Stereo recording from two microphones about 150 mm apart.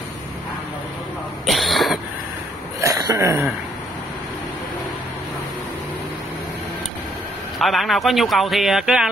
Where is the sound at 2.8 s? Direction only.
25° right (ahead or behind).